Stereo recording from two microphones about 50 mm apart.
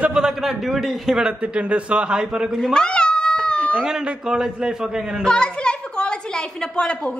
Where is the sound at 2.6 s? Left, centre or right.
Centre.